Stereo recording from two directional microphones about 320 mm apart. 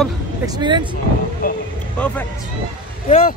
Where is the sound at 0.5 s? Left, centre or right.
Centre.